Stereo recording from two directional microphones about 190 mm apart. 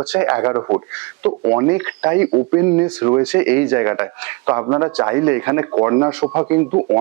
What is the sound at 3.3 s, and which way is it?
Speech, 10° right (ahead or behind).